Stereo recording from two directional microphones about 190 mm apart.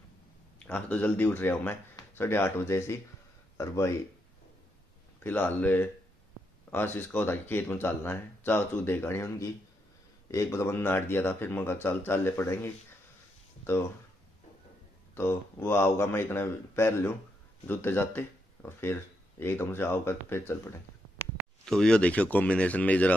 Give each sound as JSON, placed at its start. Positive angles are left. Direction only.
{"t": 0.7, "sound": "speech", "side_deg": 10}
{"t": 5.2, "sound": "speech", "side_deg": 10}
{"t": 15.1, "sound": "speech", "side_deg": 10}